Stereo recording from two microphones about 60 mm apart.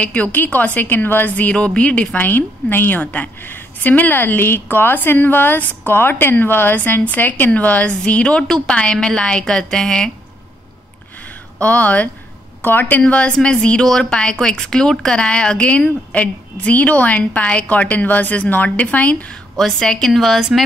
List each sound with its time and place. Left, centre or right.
0.0 s a woman's voice: left
11.5 s a woman's voice: left
13.0 s a woman's voice: centre
19.8 s a woman's voice: centre
20.1 s speech: centre